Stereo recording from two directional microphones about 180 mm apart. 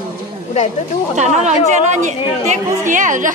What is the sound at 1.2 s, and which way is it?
A woman's voice, 40° right (ahead or behind).